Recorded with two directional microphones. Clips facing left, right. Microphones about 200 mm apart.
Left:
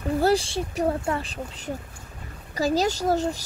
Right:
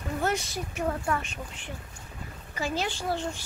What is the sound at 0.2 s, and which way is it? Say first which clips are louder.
Speech: left 7 dB; 30° left (ahead or behind).